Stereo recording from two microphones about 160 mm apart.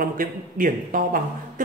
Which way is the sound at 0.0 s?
60° right (ahead or behind).